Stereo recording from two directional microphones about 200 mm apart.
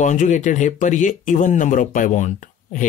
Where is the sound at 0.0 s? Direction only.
35° left (ahead or behind).